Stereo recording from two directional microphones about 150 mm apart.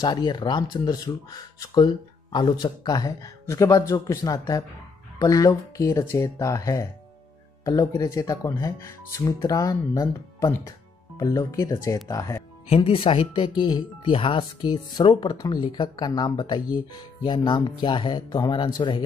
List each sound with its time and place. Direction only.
0.0 s speech: 30° left (ahead or behind)
12.6 s speech: 40° left (ahead or behind)